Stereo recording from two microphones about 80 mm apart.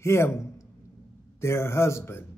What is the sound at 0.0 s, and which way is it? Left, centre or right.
A man's voice, left.